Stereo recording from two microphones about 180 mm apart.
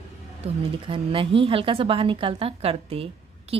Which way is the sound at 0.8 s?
30° right (ahead or behind).